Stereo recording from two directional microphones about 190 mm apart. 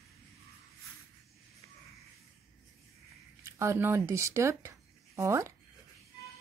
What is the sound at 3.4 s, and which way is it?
Speech, 15° right (ahead or behind).